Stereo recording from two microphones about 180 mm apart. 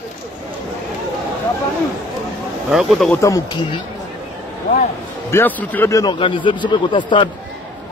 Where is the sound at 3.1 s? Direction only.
20° left (ahead or behind).